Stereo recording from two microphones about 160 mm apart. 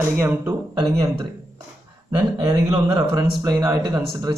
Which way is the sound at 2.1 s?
25° right (ahead or behind).